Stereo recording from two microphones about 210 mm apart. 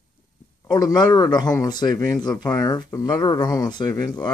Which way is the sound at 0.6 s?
20° left (ahead or behind).